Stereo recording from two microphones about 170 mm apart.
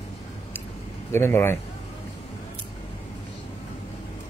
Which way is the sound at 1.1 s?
15° left (ahead or behind).